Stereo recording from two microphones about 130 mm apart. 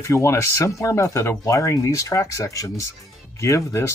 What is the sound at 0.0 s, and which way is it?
Speech, 25° left (ahead or behind).